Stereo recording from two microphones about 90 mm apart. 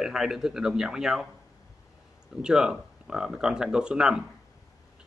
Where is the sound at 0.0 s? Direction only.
5° right (ahead or behind).